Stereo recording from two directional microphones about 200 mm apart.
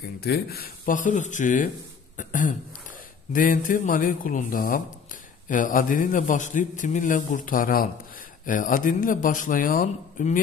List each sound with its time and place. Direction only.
0.2 s a man's voice: 50° left (ahead or behind)
2.1 s throat clearing: 40° left (ahead or behind)
3.3 s a man's voice: 45° left (ahead or behind)